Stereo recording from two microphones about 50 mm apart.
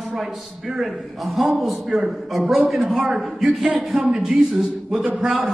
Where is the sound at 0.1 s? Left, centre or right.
Centre.